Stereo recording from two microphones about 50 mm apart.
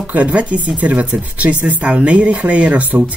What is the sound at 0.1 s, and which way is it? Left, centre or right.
Speech, right.